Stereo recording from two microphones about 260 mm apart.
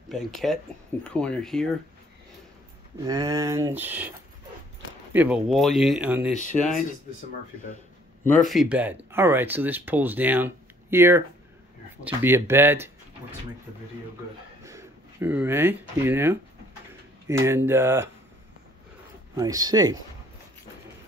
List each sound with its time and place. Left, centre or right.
0.1 s speech: centre
3.1 s speech: centre
5.1 s speech: centre
6.3 s speech: left
8.4 s speech: centre
14.6 s speech: centre
19.3 s speech: centre